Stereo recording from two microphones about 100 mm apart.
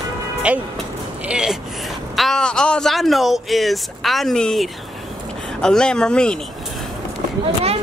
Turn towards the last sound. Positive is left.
turn(degrees=-90)